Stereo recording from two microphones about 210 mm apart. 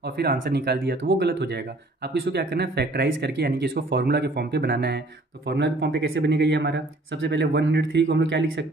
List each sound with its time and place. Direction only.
0.2 s speech: 50° right (ahead or behind)